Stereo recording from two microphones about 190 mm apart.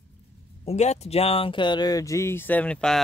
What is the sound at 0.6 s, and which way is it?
Speech, 35° left (ahead or behind).